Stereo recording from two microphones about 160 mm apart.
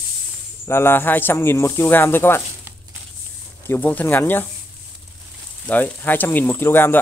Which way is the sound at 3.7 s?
10° left (ahead or behind).